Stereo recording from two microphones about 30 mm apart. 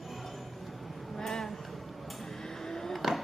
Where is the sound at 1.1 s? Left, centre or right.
Centre.